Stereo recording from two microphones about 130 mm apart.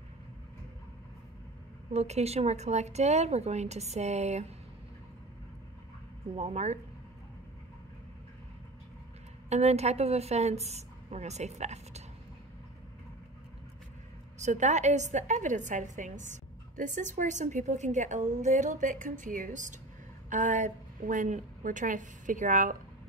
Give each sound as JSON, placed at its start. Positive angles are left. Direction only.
{"t": 1.9, "sound": "speech", "side_deg": -55}
{"t": 6.3, "sound": "speech", "side_deg": -60}
{"t": 9.5, "sound": "speech", "side_deg": -55}
{"t": 14.4, "sound": "a woman's voice", "side_deg": -65}
{"t": 20.2, "sound": "a woman's voice", "side_deg": -70}